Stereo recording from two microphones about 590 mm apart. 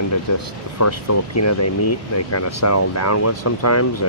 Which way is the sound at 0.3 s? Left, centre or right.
Left.